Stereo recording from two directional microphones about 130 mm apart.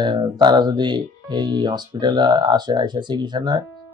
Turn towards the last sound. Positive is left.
turn(degrees=-35)  # may be behind; listen again after turning